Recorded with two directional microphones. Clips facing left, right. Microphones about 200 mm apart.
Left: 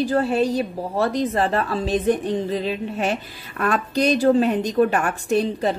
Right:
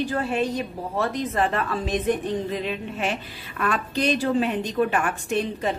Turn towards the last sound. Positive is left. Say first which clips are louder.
# left 5 dB
turn(degrees=35)  # may be behind; listen again after turning